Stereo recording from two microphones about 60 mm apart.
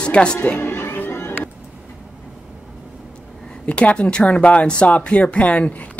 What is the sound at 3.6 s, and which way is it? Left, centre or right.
Speech, centre.